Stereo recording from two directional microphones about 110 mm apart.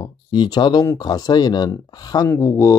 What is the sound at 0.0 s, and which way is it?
Speech, 40° left (ahead or behind).